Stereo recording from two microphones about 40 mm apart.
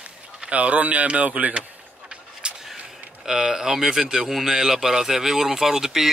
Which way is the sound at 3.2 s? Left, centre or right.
Centre.